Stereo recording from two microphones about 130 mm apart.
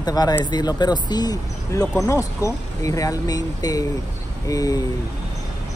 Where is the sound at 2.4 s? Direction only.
25° left (ahead or behind).